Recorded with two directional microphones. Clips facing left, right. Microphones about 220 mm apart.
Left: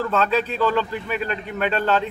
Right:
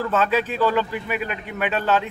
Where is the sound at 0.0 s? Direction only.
5° right (ahead or behind).